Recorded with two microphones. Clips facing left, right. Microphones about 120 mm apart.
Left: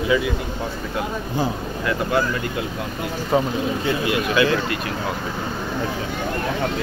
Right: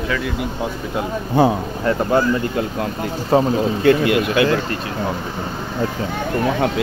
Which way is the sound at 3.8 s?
60° right (ahead or behind).